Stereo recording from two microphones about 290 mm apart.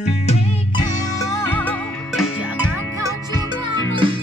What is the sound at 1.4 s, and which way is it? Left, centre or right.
Music, centre.